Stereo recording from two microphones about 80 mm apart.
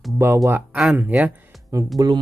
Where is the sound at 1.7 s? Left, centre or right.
Right.